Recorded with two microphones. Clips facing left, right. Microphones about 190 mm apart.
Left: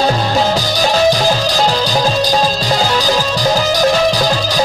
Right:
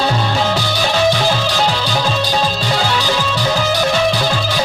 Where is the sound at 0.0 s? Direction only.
40° left (ahead or behind).